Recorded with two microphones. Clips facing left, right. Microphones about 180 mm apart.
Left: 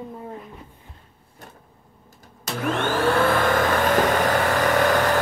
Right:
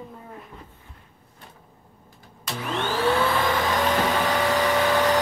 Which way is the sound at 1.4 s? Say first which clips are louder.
Left 4 dB; 45° left (ahead or behind).